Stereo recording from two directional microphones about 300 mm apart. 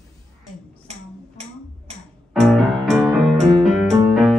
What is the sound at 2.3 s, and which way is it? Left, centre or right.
Keyboard, centre.